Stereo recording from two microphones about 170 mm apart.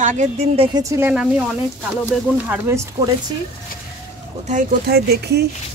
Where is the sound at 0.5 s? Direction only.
20° right (ahead or behind).